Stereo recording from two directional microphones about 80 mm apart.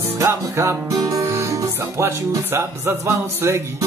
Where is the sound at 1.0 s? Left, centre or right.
Right.